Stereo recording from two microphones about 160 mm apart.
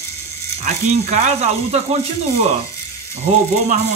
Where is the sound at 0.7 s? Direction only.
45° right (ahead or behind).